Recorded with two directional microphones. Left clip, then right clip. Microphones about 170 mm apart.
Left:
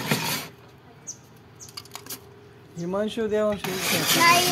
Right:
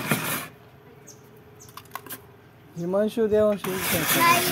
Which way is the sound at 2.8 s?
25° right (ahead or behind).